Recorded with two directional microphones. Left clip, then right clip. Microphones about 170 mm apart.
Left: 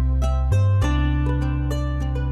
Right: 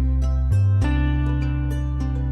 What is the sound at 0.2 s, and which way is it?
Music, 40° left (ahead or behind).